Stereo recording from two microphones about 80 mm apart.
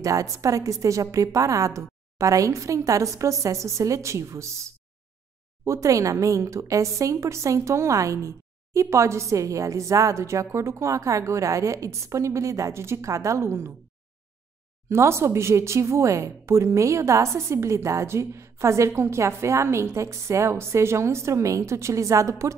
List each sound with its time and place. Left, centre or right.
0.0 s a woman's voice: right
5.7 s a woman's voice: right
14.9 s a woman's voice: right